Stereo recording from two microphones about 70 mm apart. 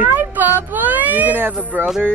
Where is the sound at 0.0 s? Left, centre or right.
Right.